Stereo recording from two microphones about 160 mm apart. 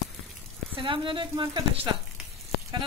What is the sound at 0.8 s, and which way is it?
A woman's voice, 30° right (ahead or behind).